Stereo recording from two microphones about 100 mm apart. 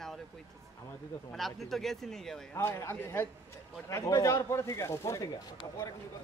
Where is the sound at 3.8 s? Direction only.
35° left (ahead or behind).